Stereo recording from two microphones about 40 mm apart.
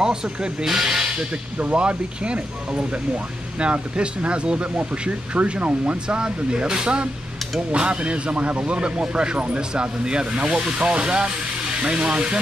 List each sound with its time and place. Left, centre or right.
0.0 s speech: centre
1.1 s speech: right